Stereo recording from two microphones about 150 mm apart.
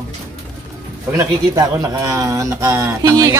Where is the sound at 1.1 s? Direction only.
20° right (ahead or behind).